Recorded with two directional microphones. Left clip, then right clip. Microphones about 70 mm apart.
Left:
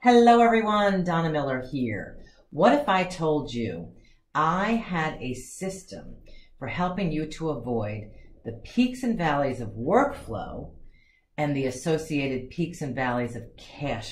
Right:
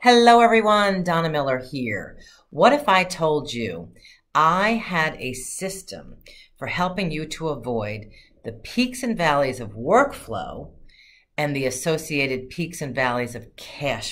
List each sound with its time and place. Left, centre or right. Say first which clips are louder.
0.0 s speech: right 4 dB; centre
10.3 s speech: right 5 dB; right
11.3 s speech: right 4 dB; right